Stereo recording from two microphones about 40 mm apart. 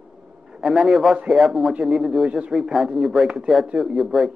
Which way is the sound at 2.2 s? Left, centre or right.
Right.